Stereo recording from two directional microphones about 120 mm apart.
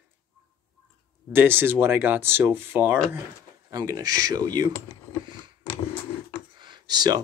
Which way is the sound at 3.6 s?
30° right (ahead or behind).